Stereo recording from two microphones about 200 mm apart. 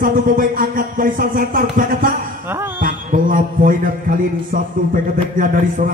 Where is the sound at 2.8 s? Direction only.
40° right (ahead or behind).